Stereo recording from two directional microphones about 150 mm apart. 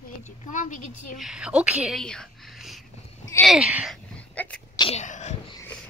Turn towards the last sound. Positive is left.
turn(degrees=50)  # may be behind; listen again after turning